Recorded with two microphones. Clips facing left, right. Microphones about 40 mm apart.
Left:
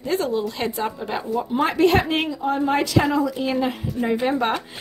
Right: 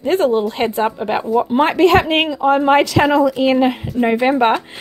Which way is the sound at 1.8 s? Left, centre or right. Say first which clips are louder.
Right 5 dB; right.